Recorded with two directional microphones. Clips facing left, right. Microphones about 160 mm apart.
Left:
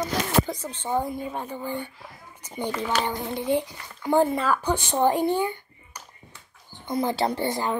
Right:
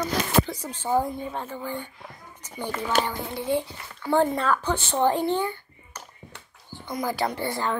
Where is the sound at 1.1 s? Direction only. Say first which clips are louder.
Left 1 dB; 10° left (ahead or behind).